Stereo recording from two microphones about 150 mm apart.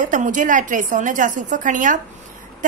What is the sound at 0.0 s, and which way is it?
A woman's voice, 60° right (ahead or behind).